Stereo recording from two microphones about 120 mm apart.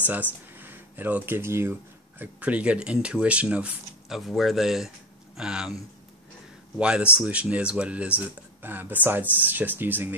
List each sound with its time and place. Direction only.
0.0 s speech: 15° right (ahead or behind)
6.8 s speech: 10° right (ahead or behind)